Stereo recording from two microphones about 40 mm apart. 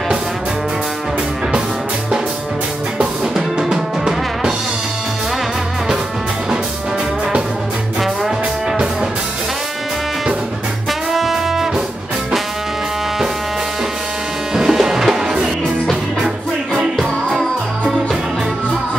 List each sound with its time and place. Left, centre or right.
3.0 s music: centre
10.9 s brass instrument: centre
14.5 s music: centre
16.9 s music: centre